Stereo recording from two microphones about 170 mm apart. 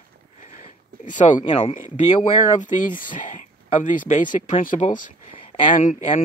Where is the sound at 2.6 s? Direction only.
50° left (ahead or behind).